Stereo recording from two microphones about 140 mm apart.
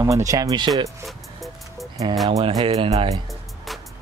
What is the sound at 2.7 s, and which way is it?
Speech, 45° right (ahead or behind).